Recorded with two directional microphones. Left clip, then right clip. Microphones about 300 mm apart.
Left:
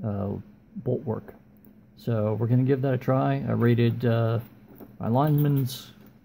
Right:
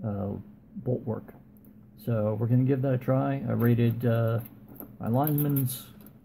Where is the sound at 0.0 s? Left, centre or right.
Centre.